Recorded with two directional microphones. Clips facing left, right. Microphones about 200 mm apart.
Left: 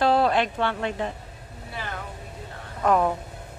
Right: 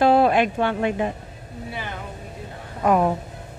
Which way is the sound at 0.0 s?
15° right (ahead or behind).